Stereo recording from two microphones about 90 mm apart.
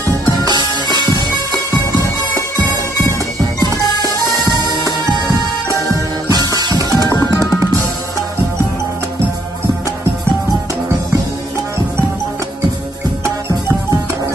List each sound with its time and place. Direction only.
0.5 s music: 55° right (ahead or behind)
3.5 s music: 45° right (ahead or behind)
13.2 s music: 35° right (ahead or behind)